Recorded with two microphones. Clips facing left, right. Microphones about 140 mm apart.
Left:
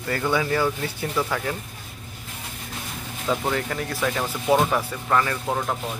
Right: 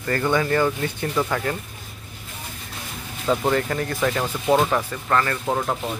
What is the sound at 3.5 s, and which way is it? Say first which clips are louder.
Speech: right 4 dB; 5° left (ahead or behind).